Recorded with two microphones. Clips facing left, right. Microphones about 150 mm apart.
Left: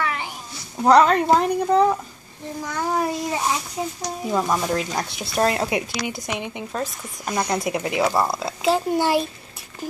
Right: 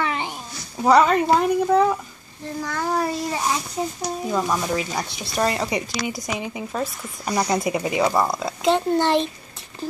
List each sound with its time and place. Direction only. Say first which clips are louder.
0.0 s a sound: right 1 dB; 25° right (ahead or behind)
0.8 s speech: left 1 dB; centre (ahead or behind)
2.6 s child singing: even; 15° left (ahead or behind)
4.0 s speech: left 1 dB; centre (ahead or behind)